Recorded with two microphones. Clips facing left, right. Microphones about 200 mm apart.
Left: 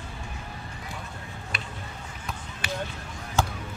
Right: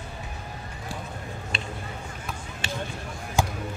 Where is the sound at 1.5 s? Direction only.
25° right (ahead or behind).